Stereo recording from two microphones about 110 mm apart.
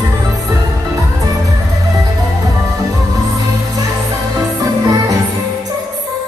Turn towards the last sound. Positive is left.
turn(degrees=-35)  # may be behind; listen again after turning